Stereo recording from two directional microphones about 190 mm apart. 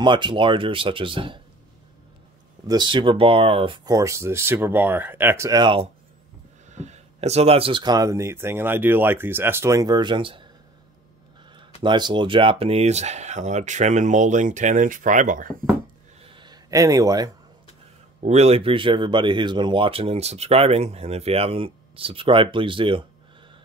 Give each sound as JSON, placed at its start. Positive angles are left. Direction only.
{"t": 0.0, "sound": "speech", "side_deg": -25}
{"t": 2.6, "sound": "speech", "side_deg": -20}
{"t": 6.7, "sound": "speech", "side_deg": -35}
{"t": 11.5, "sound": "speech", "side_deg": -25}
{"t": 16.3, "sound": "a sound", "side_deg": -20}
{"t": 18.2, "sound": "speech", "side_deg": -35}